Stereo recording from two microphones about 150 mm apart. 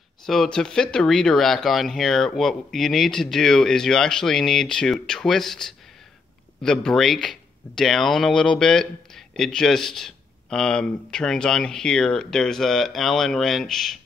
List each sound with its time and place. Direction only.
0.3 s speech: 5° left (ahead or behind)